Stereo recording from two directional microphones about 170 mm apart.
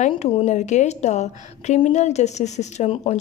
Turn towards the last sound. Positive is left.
turn(degrees=40)  # may be behind; listen again after turning